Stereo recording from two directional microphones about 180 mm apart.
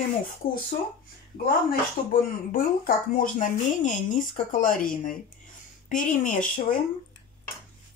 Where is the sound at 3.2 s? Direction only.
45° left (ahead or behind).